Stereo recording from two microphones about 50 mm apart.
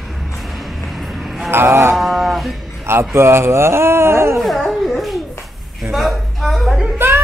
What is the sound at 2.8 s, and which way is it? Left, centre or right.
Speech, right.